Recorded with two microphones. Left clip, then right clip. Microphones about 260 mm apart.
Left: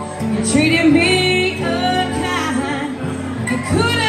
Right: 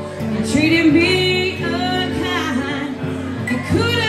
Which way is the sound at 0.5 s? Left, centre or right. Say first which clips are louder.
Even; centre.